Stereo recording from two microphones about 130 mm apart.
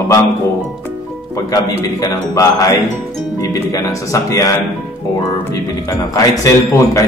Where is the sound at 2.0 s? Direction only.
30° left (ahead or behind).